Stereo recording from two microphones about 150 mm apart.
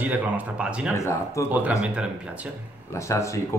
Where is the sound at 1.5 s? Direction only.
10° right (ahead or behind).